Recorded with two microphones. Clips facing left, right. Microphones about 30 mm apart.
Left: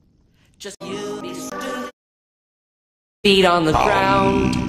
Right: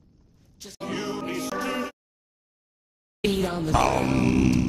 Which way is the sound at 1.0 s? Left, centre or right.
Left.